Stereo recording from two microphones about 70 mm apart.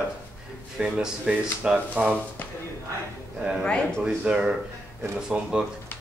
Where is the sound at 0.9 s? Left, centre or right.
Centre.